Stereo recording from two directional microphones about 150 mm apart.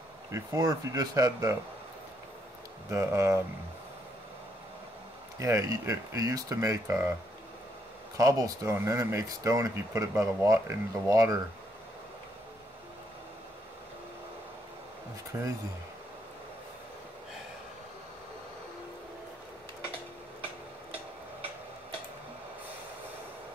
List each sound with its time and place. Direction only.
0.3 s speech: 20° right (ahead or behind)
2.9 s speech: 20° right (ahead or behind)
5.4 s speech: 20° right (ahead or behind)
8.2 s speech: 25° right (ahead or behind)
15.3 s speech: 15° right (ahead or behind)